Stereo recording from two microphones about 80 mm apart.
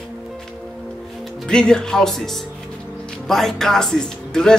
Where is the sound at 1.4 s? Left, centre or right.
Centre.